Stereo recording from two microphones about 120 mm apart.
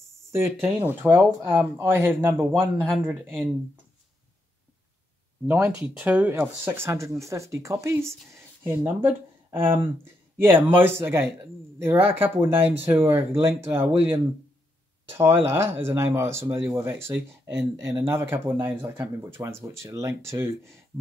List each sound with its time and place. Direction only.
0.3 s speech: 20° right (ahead or behind)
5.5 s speech: 10° right (ahead or behind)